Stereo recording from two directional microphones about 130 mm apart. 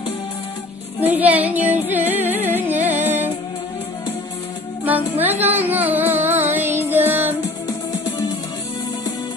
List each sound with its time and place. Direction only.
1.0 s music: 10° right (ahead or behind)
5.2 s child singing: 15° right (ahead or behind)
7.6 s music: 25° left (ahead or behind)